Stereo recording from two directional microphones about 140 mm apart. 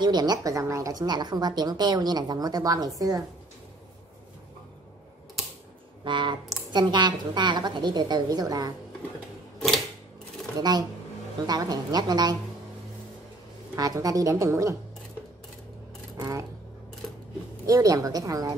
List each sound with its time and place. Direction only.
0.0 s a woman's voice: 30° right (ahead or behind)
6.0 s a woman's voice: 35° right (ahead or behind)
9.6 s typewriter: centre (ahead or behind)
10.6 s a woman's voice: 30° right (ahead or behind)
13.7 s a woman's voice: 25° right (ahead or behind)
16.2 s a woman's voice: 20° right (ahead or behind)
17.6 s a woman's voice: 25° right (ahead or behind)